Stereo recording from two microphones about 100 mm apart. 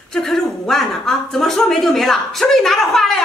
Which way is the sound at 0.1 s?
5° left (ahead or behind).